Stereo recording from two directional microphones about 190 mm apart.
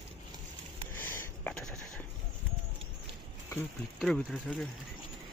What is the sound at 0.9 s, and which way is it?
Sniff, 10° left (ahead or behind).